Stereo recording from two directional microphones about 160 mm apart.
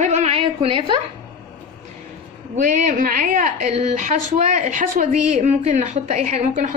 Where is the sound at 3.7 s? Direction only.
40° right (ahead or behind).